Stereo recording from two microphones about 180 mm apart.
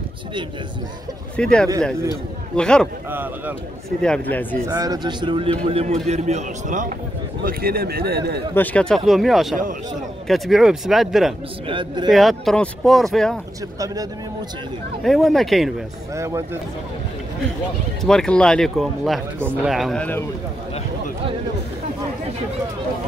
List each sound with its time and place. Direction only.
1.3 s speech: 5° left (ahead or behind)
3.1 s speech: 10° right (ahead or behind)
4.0 s speech: 5° left (ahead or behind)
4.6 s a man's voice: 20° right (ahead or behind); by 6.9 s 40° right (ahead or behind)
7.4 s speech: 55° right (ahead or behind)
8.5 s speech: 5° left (ahead or behind)
11.6 s speech: 30° right (ahead or behind)
12.1 s speech: centre (ahead or behind)
15.0 s speech: centre (ahead or behind)
16.2 s speech: 15° right (ahead or behind)
18.0 s speech: 5° left (ahead or behind)